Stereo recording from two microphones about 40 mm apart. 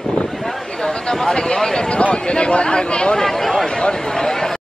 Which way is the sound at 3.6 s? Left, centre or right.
Centre.